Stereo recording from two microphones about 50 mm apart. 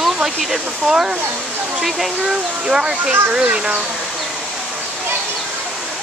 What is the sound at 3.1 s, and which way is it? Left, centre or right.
Speech, right.